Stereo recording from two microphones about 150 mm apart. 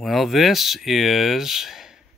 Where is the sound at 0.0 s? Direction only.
Centre (ahead or behind).